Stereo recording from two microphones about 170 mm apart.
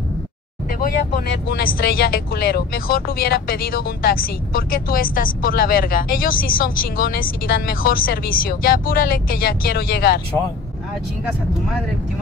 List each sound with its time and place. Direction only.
1.3 s speech: 60° left (ahead or behind)